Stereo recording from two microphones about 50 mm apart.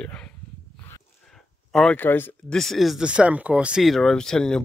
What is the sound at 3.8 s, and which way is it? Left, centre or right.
Speech, centre.